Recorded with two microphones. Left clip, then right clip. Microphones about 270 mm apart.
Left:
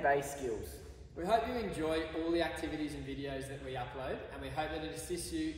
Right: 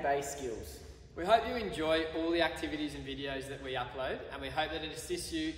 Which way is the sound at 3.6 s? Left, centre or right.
Centre.